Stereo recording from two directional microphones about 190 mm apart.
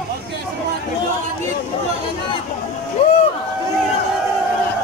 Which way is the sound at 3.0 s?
30° left (ahead or behind).